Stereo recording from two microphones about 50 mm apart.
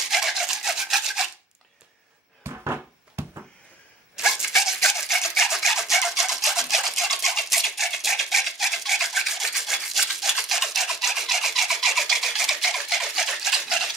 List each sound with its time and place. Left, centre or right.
0.1 s rub: centre
2.4 s a sound: right
4.2 s rub: centre